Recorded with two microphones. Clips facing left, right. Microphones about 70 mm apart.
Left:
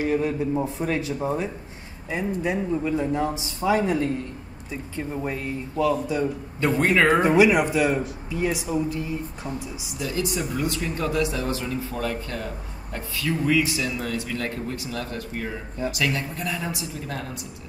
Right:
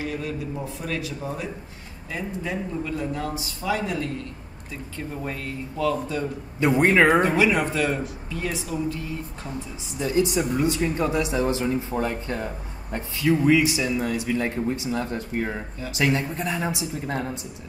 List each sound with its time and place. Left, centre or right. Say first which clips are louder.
0.0 s speech: left 6 dB; left
2.0 s speech: left 4 dB; centre
4.9 s speech: left 3 dB; centre
6.6 s speech: right 2 dB; centre
7.2 s speech: left 2 dB; centre
9.9 s speech: right 5 dB; right